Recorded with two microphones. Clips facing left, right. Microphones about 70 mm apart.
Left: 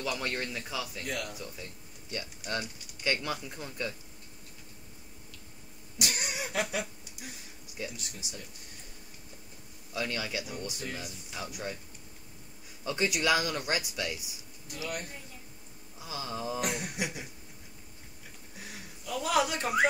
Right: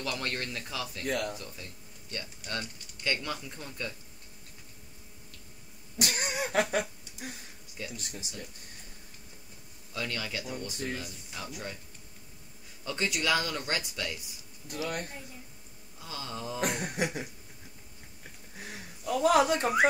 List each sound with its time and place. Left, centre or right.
0.0 s speech: centre
1.0 s a man's voice: right
1.3 s speech: centre
5.9 s a man's voice: right
9.9 s speech: centre
12.8 s speech: centre
14.7 s a man's voice: right
16.0 s speech: centre
16.6 s a man's voice: right
19.0 s a man's voice: right